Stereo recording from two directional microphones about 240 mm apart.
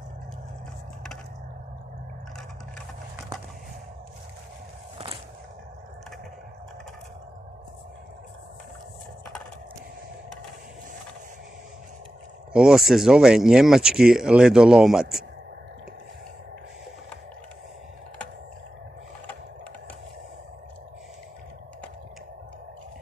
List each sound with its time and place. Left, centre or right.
4.9 s skateboard: right
12.5 s speech: centre